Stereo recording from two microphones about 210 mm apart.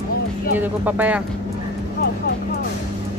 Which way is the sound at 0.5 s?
10° right (ahead or behind).